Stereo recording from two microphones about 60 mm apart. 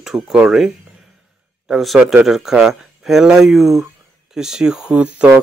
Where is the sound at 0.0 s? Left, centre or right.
Centre.